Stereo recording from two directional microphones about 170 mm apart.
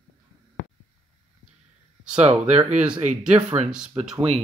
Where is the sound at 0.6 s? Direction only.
90° left.